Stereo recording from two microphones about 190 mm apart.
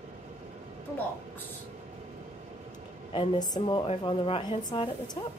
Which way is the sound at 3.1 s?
30° left (ahead or behind).